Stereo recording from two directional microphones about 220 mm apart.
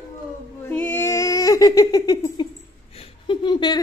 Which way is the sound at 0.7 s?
10° left (ahead or behind).